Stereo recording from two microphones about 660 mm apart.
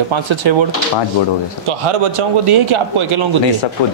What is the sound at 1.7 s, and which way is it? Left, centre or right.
Speech, right.